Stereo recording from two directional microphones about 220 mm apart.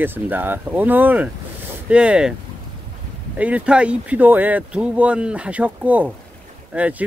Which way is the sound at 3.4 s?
5° right (ahead or behind).